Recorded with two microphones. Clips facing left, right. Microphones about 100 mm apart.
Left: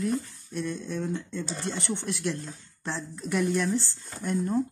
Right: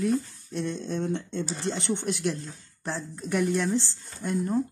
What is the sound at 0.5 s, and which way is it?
Speech, 25° right (ahead or behind).